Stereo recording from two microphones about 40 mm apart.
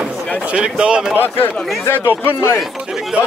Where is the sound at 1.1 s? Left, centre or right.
Left.